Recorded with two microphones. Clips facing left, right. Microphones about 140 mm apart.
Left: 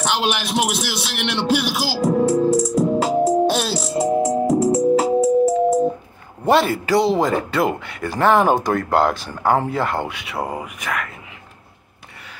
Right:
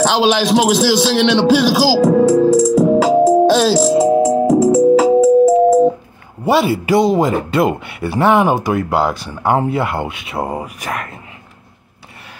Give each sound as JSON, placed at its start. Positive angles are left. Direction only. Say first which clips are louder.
{"t": 0.0, "sound": "speech", "louder": "right 8 dB", "side_deg": -90}
{"t": 6.4, "sound": "a man's voice", "louder": "right 2 dB", "side_deg": -5}
{"t": 6.9, "sound": "speech", "louder": "right 4 dB", "side_deg": -15}
{"t": 9.4, "sound": "speech", "louder": "right 3 dB", "side_deg": -15}
{"t": 10.5, "sound": "speech", "louder": "right 3 dB", "side_deg": -35}